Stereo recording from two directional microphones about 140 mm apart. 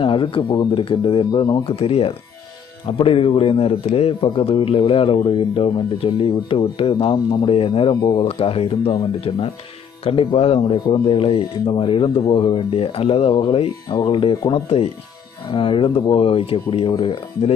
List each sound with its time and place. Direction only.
0.0 s speech: 40° left (ahead or behind)
10.0 s speech: 40° left (ahead or behind)